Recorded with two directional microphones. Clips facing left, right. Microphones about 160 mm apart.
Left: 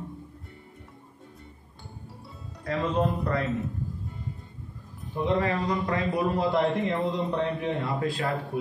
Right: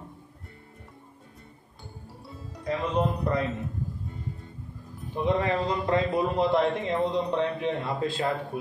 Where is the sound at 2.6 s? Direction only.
20° right (ahead or behind).